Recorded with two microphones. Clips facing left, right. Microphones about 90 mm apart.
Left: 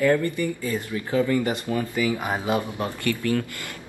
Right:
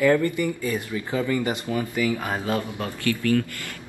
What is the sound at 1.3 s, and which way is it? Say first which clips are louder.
Speech: left 1 dB; 10° right (ahead or behind).